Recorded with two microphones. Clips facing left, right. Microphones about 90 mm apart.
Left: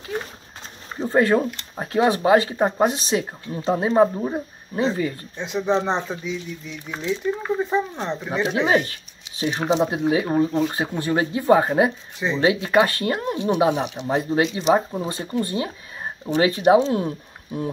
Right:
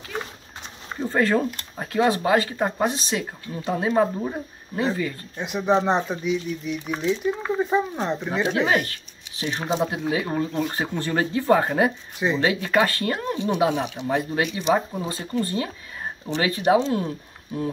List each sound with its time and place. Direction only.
1.0 s speech: 15° left (ahead or behind)
5.4 s speech: 5° right (ahead or behind)
7.7 s speech: 5° right (ahead or behind)
8.3 s speech: 10° left (ahead or behind)
8.5 s speech: 25° left (ahead or behind)